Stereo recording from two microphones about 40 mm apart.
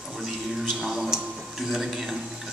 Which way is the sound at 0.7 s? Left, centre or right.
Centre.